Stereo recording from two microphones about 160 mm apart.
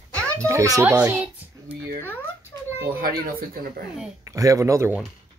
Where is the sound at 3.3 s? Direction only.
65° right (ahead or behind).